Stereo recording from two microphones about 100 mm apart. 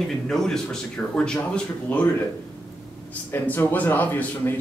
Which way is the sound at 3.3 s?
15° left (ahead or behind).